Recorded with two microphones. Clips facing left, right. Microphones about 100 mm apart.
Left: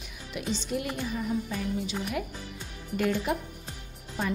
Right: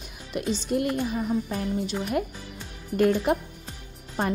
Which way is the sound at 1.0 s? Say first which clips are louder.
Right 4 dB; 50° right (ahead or behind).